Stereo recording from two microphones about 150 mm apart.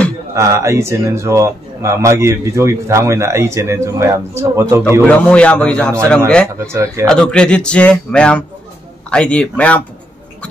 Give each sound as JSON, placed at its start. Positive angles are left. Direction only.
{"t": 0.3, "sound": "speech", "side_deg": -20}
{"t": 5.0, "sound": "a man's voice", "side_deg": 10}
{"t": 6.6, "sound": "speech", "side_deg": -20}
{"t": 7.1, "sound": "a man's voice", "side_deg": 5}